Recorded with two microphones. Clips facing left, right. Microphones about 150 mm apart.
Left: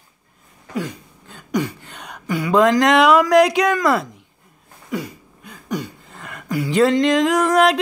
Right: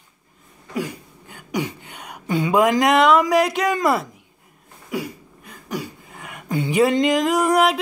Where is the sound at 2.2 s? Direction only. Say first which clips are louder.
Right 1 dB; 25° right (ahead or behind).